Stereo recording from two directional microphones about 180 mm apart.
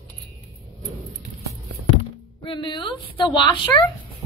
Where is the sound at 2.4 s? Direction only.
25° left (ahead or behind).